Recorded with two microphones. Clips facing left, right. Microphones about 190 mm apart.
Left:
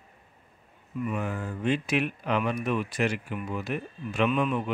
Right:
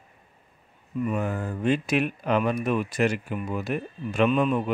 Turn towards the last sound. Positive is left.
turn(degrees=-40)  # may be behind; listen again after turning